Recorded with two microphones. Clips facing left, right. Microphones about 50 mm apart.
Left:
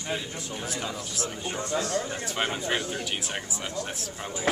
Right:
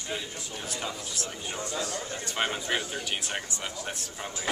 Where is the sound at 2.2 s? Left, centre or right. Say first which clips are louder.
Left 1 dB; centre.